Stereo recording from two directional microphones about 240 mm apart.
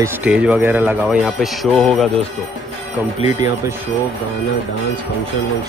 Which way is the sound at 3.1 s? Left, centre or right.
Left.